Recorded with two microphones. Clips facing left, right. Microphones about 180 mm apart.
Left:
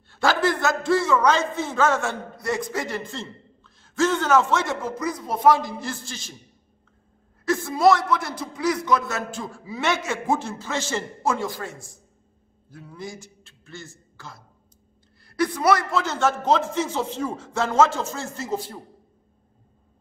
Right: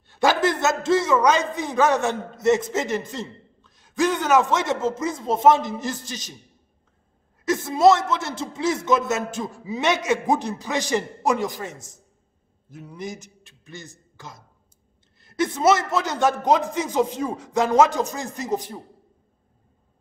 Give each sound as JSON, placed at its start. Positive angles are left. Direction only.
{"t": 0.1, "sound": "a man's voice", "side_deg": -20}
{"t": 7.4, "sound": "a man's voice", "side_deg": -20}